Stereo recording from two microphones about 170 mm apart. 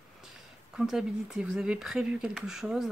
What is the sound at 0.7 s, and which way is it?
Speech, centre (ahead or behind).